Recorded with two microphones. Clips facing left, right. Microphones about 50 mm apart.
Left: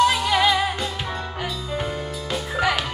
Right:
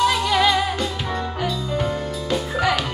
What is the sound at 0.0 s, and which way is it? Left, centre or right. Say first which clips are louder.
Music: even; centre.